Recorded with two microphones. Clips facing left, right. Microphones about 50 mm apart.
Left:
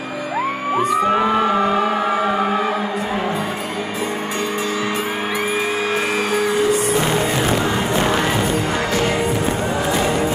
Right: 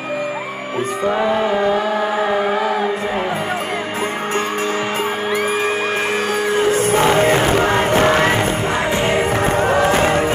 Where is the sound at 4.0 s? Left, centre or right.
Right.